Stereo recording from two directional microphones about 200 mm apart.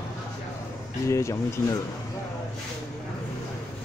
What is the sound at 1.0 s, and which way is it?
Speech, 15° left (ahead or behind).